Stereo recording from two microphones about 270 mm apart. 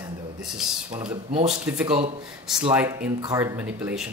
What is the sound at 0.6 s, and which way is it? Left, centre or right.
Speech, centre.